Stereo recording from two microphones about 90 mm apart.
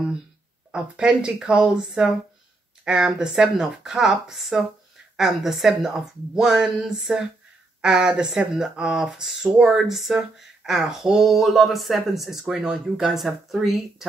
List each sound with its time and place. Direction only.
0.7 s speech: 10° right (ahead or behind)